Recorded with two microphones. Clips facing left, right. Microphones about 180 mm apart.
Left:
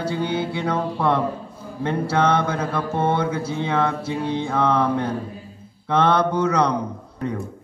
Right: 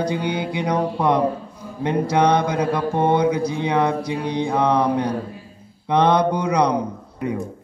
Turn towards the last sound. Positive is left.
turn(degrees=-10)  # may be behind; listen again after turning